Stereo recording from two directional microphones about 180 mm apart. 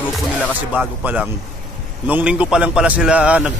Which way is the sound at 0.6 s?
10° right (ahead or behind).